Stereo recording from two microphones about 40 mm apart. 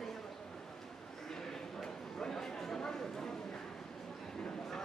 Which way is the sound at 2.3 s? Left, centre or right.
Centre.